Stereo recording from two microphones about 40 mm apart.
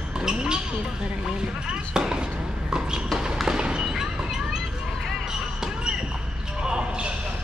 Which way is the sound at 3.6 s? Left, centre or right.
Centre.